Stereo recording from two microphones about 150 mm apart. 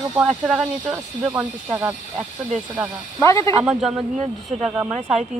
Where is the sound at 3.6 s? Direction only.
5° right (ahead or behind).